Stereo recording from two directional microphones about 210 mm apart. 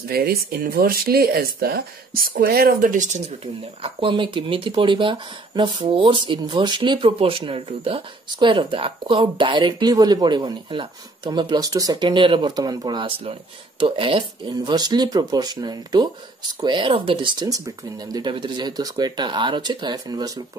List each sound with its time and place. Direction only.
0.0 s speech: 45° right (ahead or behind)
3.8 s speech: 25° right (ahead or behind)